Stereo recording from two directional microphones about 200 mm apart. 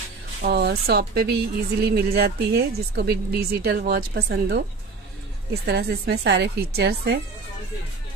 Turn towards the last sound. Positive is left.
turn(degrees=-55)  # may be behind; listen again after turning